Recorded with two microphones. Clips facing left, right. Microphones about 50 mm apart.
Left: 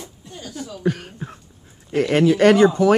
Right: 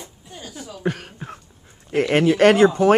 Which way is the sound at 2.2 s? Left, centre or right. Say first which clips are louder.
Left 1 dB; right.